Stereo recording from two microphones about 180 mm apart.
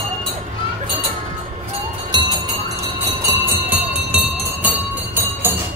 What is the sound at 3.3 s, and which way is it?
Music, 10° right (ahead or behind).